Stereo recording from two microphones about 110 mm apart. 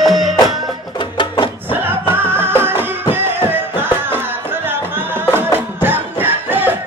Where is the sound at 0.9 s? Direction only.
45° left (ahead or behind).